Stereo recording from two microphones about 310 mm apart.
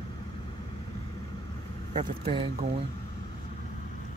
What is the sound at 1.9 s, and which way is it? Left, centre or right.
Speech, right.